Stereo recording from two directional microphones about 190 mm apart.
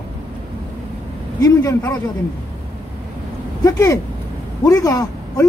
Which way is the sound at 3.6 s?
20° left (ahead or behind).